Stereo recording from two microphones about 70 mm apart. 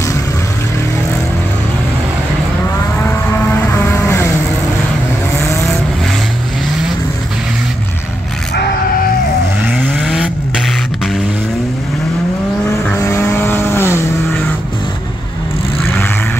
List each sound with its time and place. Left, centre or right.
3.7 s vehicle: left
9.9 s vehicle: centre
13.0 s vehicle: left